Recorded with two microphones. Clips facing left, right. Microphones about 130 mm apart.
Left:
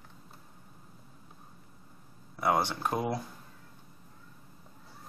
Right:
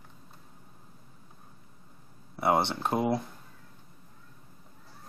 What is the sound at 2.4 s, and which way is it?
Speech, 25° right (ahead or behind).